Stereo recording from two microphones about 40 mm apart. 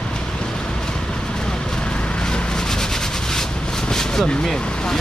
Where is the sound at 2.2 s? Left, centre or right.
Centre.